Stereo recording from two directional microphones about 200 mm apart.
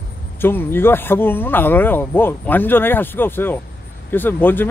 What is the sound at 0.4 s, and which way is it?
Speech, 10° left (ahead or behind).